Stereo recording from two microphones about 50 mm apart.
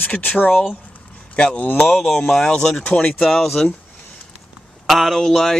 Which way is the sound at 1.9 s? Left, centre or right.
Centre.